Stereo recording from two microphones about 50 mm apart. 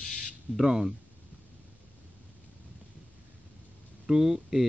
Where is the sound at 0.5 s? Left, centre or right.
Centre.